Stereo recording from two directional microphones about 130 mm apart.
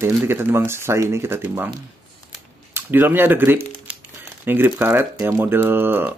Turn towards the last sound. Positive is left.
turn(degrees=-15)  # may be behind; listen again after turning